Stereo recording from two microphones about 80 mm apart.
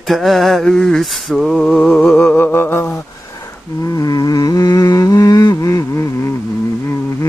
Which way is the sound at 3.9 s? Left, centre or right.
Left.